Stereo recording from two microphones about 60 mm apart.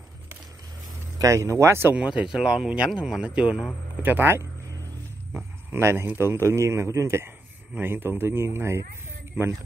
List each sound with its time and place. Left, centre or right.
1.1 s a man's voice: right
2.0 s speech: centre
4.0 s a man's voice: right
7.8 s speech: right